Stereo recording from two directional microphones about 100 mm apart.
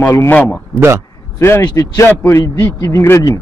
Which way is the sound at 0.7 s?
25° right (ahead or behind).